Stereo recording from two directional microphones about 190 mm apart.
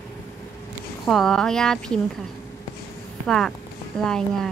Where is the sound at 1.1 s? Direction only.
Centre (ahead or behind).